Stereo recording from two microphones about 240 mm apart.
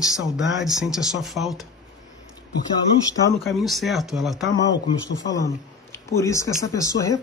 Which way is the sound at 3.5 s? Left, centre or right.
Centre.